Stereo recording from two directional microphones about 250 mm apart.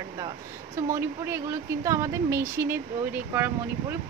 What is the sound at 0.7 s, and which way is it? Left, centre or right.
Speech, centre.